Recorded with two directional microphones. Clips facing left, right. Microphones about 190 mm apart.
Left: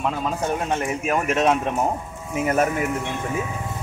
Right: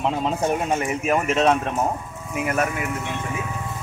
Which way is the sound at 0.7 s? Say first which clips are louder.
Right 1 dB; 5° right (ahead or behind).